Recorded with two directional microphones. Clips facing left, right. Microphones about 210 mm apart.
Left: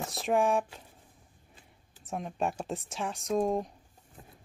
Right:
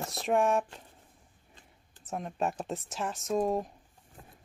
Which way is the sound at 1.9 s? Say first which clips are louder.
Even; centre (ahead or behind).